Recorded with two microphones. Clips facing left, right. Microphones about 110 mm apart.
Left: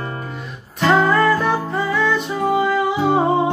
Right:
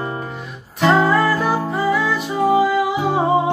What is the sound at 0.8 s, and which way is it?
Music, 5° right (ahead or behind).